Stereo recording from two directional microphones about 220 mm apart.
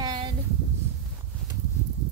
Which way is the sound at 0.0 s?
20° right (ahead or behind).